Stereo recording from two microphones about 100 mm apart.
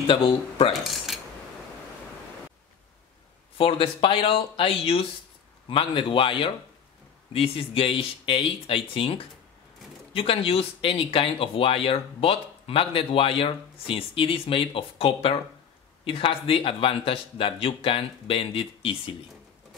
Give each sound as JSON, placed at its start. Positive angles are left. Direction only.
{"t": 0.0, "sound": "speech", "side_deg": 70}
{"t": 0.8, "sound": "a sound", "side_deg": 0}
{"t": 3.5, "sound": "a man's voice", "side_deg": 65}